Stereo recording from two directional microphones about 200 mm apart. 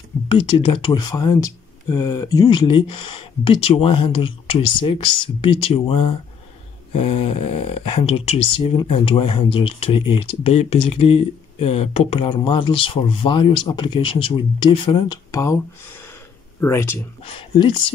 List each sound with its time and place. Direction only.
0.3 s speech: 25° left (ahead or behind)
16.5 s speech: 10° left (ahead or behind)
17.2 s speech: 25° left (ahead or behind)